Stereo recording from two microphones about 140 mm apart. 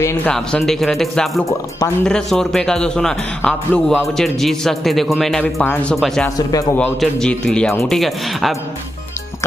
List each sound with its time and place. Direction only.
0.0 s a man's voice: 20° left (ahead or behind)
0.3 s a man's voice: 5° left (ahead or behind)
5.4 s speech: 10° left (ahead or behind)
5.9 s a man's voice: centre (ahead or behind)
6.3 s a man's voice: 25° left (ahead or behind)
7.0 s a man's voice: 5° left (ahead or behind)